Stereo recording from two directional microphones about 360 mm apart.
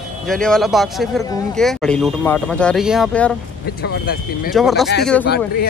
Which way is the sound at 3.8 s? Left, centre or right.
Left.